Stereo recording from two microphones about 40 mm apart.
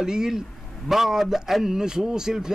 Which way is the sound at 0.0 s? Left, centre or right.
Centre.